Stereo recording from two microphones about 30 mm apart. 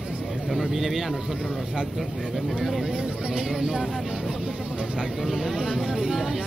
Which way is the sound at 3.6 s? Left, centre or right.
Right.